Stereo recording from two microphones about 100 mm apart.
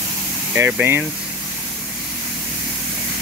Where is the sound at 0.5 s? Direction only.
20° right (ahead or behind).